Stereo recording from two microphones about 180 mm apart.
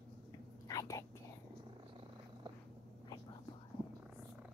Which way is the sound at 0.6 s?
20° left (ahead or behind).